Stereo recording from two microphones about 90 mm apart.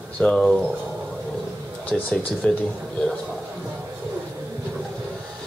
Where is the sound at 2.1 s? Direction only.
15° left (ahead or behind).